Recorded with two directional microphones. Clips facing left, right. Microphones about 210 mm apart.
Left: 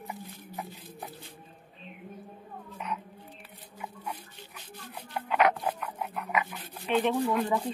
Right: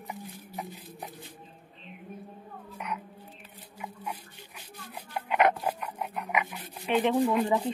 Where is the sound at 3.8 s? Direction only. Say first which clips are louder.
Right 1 dB; 10° right (ahead or behind).